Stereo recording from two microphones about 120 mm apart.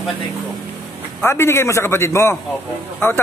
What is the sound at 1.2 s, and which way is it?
A man's voice, 20° left (ahead or behind).